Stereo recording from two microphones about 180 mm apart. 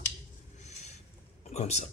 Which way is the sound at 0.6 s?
40° left (ahead or behind).